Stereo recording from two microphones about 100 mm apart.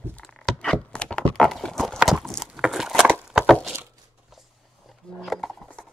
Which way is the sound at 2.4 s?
5° right (ahead or behind).